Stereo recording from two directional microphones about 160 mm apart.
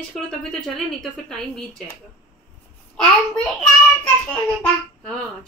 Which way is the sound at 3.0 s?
Centre (ahead or behind).